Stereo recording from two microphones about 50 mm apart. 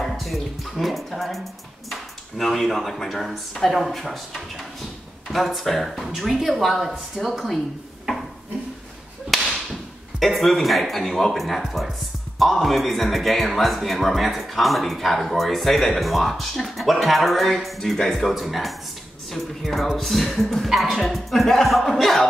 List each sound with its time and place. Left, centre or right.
0.0 s music: centre
1.9 s speech: centre
9.3 s whip: centre
10.1 s speech: centre